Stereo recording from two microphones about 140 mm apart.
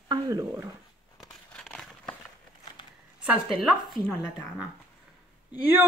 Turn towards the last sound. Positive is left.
turn(degrees=-15)  # may be behind; listen again after turning